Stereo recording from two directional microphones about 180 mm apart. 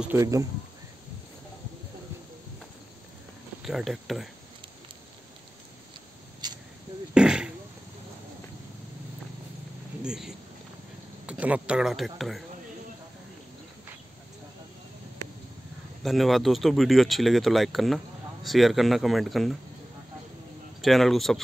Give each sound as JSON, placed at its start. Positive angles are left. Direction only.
{"t": 0.0, "sound": "speech", "side_deg": -15}
{"t": 3.6, "sound": "speech", "side_deg": 0}
{"t": 6.4, "sound": "a sound", "side_deg": -25}
{"t": 7.2, "sound": "a sound", "side_deg": -5}
{"t": 10.0, "sound": "speech", "side_deg": -5}
{"t": 16.0, "sound": "speech", "side_deg": 0}
{"t": 20.8, "sound": "speech", "side_deg": 0}